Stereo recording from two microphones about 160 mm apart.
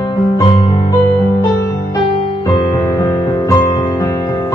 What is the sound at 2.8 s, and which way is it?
Music, 20° left (ahead or behind).